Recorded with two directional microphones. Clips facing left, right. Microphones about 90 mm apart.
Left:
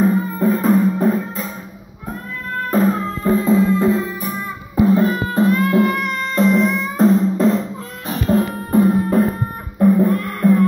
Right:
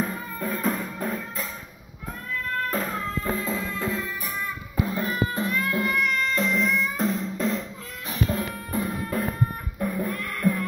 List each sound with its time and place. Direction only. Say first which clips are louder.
0.0 s music: left 13 dB; 25° left (ahead or behind)
2.5 s music: left 12 dB; 25° left (ahead or behind)